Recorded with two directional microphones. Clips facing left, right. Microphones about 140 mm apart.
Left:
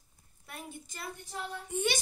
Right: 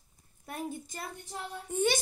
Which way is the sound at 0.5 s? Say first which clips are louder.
Right 7 dB; 45° right (ahead or behind).